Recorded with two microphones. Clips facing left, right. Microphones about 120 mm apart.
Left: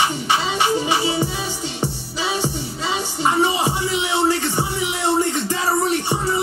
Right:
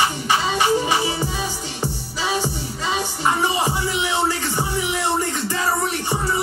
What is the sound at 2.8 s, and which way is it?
Music, 20° left (ahead or behind).